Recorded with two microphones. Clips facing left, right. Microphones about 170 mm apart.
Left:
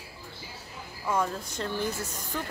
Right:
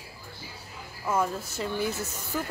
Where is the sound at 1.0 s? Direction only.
5° right (ahead or behind).